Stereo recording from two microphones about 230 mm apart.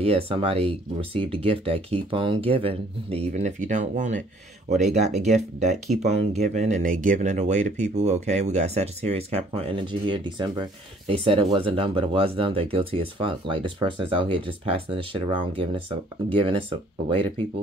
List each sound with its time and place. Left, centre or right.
0.0 s speech: right